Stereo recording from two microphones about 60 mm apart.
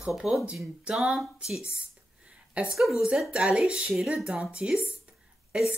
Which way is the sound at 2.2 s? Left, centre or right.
Centre.